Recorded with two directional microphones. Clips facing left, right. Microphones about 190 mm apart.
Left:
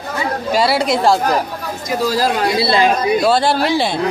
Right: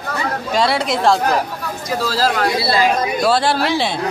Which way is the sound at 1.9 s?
15° left (ahead or behind).